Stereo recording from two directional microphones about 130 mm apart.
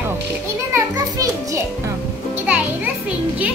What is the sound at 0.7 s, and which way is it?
A child's voice, 25° right (ahead or behind).